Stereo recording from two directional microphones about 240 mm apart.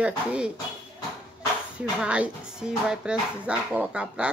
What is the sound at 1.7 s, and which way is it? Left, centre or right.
Speech, centre.